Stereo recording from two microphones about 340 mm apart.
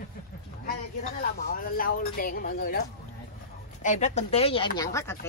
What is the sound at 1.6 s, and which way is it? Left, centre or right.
Speech, left.